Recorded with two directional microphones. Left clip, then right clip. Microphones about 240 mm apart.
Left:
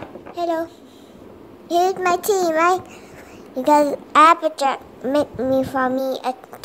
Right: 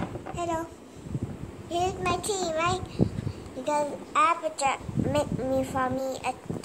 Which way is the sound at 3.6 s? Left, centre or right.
Left.